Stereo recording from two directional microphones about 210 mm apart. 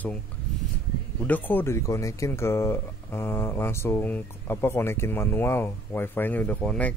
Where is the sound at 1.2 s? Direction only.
10° left (ahead or behind).